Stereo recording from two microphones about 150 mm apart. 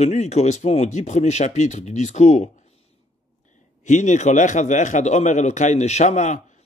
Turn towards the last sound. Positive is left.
turn(degrees=50)  # may be behind; listen again after turning